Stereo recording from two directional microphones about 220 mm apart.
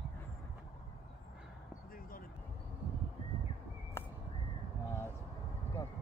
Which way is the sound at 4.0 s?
10° left (ahead or behind).